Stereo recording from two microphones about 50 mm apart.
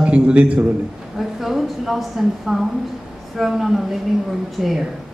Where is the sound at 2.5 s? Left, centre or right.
Centre.